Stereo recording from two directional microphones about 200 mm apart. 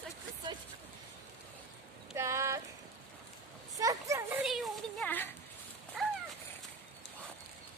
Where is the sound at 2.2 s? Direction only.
15° right (ahead or behind).